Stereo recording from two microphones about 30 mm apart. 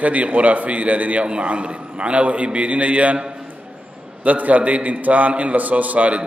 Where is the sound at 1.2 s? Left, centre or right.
Right.